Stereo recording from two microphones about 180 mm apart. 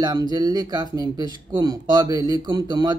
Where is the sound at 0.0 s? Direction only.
20° right (ahead or behind).